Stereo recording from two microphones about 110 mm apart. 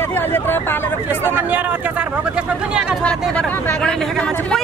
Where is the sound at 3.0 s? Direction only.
10° left (ahead or behind).